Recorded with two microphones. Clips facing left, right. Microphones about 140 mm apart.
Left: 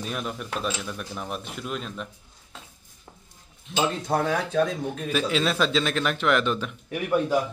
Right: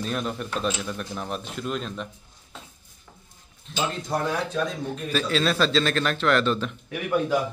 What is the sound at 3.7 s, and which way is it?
A man's voice, 15° left (ahead or behind).